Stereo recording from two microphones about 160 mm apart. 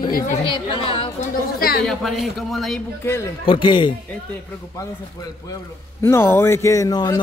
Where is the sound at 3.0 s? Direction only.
15° left (ahead or behind).